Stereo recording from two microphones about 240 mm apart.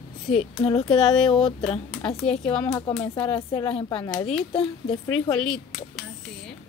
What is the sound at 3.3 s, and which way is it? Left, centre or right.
Speech, centre.